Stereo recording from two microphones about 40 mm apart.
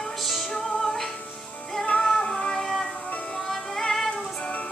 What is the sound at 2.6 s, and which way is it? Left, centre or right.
Music, centre.